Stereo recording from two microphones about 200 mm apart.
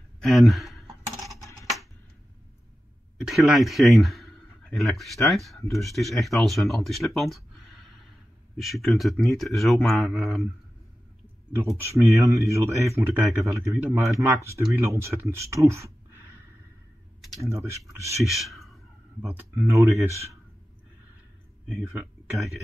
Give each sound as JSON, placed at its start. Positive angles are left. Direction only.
{"t": 0.2, "sound": "a sound", "side_deg": 0}
{"t": 1.1, "sound": "a sound", "side_deg": -15}
{"t": 3.2, "sound": "speech", "side_deg": 0}
{"t": 11.7, "sound": "speech", "side_deg": -15}
{"t": 17.4, "sound": "speech", "side_deg": -15}
{"t": 18.2, "sound": "speech", "side_deg": 0}
{"t": 19.2, "sound": "speech", "side_deg": -10}